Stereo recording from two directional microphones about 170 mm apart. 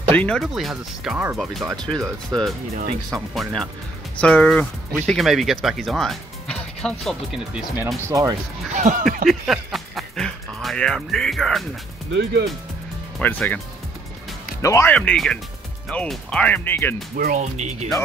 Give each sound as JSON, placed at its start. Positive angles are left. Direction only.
{"t": 0.1, "sound": "speech", "side_deg": 5}
{"t": 2.7, "sound": "speech", "side_deg": -40}
{"t": 4.2, "sound": "speech", "side_deg": 5}
{"t": 8.1, "sound": "speech", "side_deg": -20}
{"t": 8.7, "sound": "speech", "side_deg": -50}
{"t": 9.3, "sound": "speech", "side_deg": 0}
{"t": 12.1, "sound": "speech", "side_deg": -90}
{"t": 13.2, "sound": "speech", "side_deg": 10}
{"t": 14.6, "sound": "speech", "side_deg": 15}
{"t": 15.0, "sound": "speech", "side_deg": 5}
{"t": 17.2, "sound": "speech", "side_deg": -50}